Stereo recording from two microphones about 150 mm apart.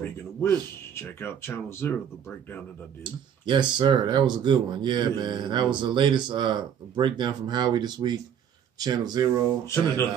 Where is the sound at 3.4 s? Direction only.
30° right (ahead or behind).